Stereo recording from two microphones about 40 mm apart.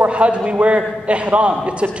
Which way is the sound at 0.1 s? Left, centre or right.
Right.